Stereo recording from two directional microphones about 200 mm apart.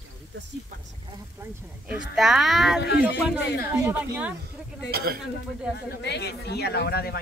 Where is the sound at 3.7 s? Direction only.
15° right (ahead or behind).